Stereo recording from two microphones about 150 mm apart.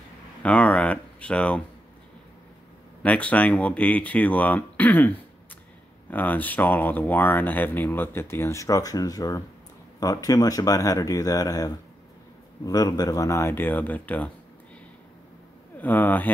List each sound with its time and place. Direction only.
0.4 s speech: 10° left (ahead or behind)
3.0 s speech: 10° left (ahead or behind)
15.8 s speech: 10° left (ahead or behind)